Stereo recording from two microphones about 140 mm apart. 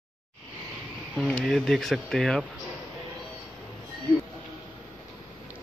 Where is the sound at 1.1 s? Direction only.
5° left (ahead or behind).